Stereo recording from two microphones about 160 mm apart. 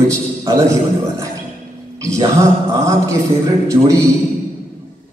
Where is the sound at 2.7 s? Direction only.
20° right (ahead or behind).